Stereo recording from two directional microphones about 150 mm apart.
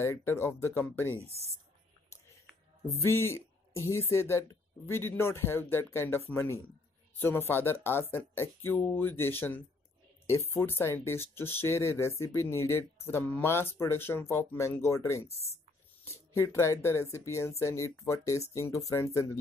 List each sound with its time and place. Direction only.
0.0 s speech: 15° left (ahead or behind)
1.2 s speech: 45° right (ahead or behind)
3.0 s speech: 15° left (ahead or behind)